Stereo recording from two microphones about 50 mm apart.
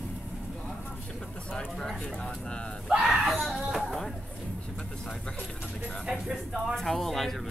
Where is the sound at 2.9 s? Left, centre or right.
Centre.